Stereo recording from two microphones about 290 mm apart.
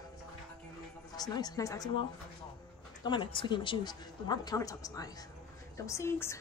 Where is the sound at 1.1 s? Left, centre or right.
Centre.